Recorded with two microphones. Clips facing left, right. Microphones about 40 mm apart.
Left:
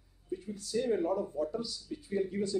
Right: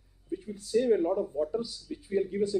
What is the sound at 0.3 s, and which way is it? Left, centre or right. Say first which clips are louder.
Speech: right 6 dB; centre.